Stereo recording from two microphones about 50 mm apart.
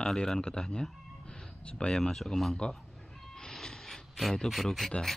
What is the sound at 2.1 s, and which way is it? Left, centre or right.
Speech, centre.